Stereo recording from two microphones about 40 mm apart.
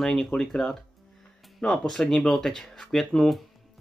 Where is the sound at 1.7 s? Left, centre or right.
Centre.